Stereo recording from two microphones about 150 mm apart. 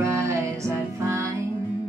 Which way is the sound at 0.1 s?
20° right (ahead or behind).